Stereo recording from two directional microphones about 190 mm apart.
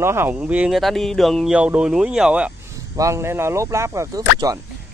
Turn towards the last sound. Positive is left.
turn(degrees=-20)  # may be behind; listen again after turning